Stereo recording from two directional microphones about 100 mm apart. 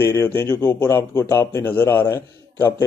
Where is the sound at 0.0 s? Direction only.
25° left (ahead or behind).